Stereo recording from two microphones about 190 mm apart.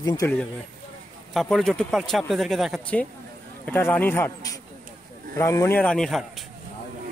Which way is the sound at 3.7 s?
10° left (ahead or behind).